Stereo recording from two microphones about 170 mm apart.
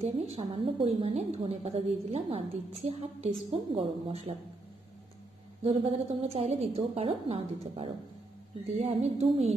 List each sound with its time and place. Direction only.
0.0 s a woman's voice: 35° right (ahead or behind)
5.6 s a woman's voice: 35° right (ahead or behind)